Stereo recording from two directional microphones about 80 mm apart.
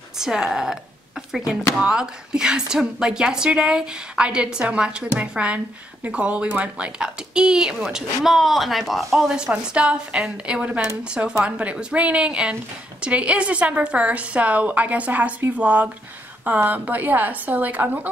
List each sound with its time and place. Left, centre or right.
0.2 s a woman's voice: centre